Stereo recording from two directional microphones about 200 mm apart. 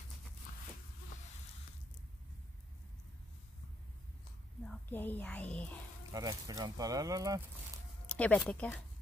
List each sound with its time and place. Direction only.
0.5 s a sound: 40° left (ahead or behind)
4.6 s speech: 10° left (ahead or behind)
6.1 s speech: 15° right (ahead or behind)
8.1 s speech: 5° left (ahead or behind)